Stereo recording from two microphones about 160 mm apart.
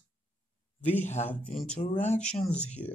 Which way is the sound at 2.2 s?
5° left (ahead or behind).